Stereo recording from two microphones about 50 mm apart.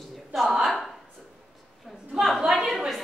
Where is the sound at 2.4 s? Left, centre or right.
Centre.